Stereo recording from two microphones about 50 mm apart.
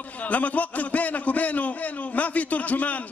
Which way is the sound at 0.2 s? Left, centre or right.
Left.